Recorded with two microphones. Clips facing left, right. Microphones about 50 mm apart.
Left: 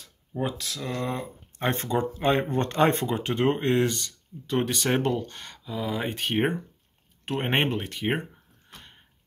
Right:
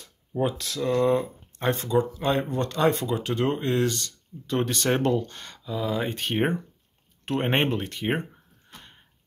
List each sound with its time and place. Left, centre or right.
0.3 s speech: centre
1.7 s speech: left; by 8.2 s centre